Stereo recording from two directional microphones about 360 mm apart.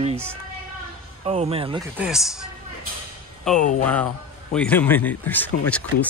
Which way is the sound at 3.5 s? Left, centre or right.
Centre.